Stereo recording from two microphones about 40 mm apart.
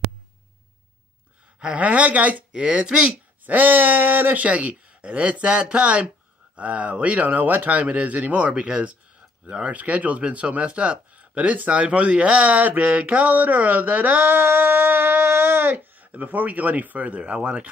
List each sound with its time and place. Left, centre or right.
1.6 s speech: right
2.5 s speech: right
3.4 s speech: right
8.5 s speech: right